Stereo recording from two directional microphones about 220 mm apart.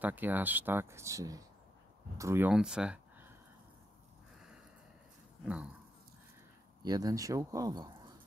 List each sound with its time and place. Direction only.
0.0 s speech: 10° right (ahead or behind)
5.4 s a sound: 5° right (ahead or behind)
6.8 s speech: 15° right (ahead or behind)